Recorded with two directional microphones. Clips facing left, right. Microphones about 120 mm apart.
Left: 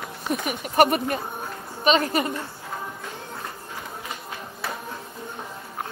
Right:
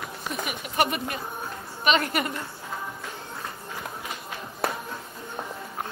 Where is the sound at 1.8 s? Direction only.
30° left (ahead or behind).